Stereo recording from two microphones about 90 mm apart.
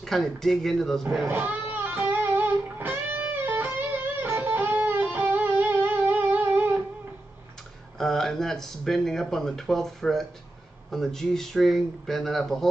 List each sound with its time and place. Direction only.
0.0 s speech: 5° left (ahead or behind)
1.3 s music: 20° right (ahead or behind)
8.0 s speech: 5° left (ahead or behind)